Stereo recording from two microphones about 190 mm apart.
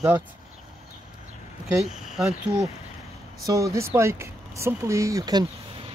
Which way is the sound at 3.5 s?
15° right (ahead or behind).